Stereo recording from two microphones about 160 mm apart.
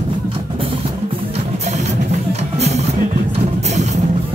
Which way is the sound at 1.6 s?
45° right (ahead or behind).